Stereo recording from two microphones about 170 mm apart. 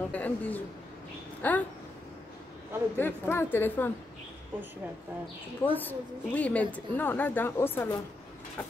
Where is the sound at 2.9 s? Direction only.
10° left (ahead or behind).